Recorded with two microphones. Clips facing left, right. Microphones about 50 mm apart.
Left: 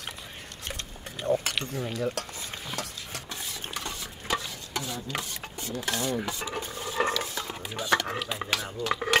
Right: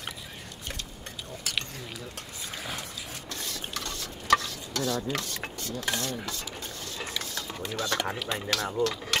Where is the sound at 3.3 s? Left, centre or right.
Centre.